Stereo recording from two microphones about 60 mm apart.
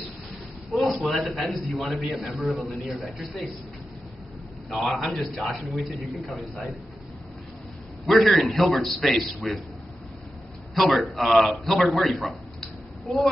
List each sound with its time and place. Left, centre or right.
0.7 s a man's voice: centre
4.6 s a man's voice: centre
8.1 s a man's voice: centre
10.7 s a man's voice: centre